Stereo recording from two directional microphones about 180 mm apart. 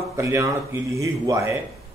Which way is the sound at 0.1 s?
15° right (ahead or behind).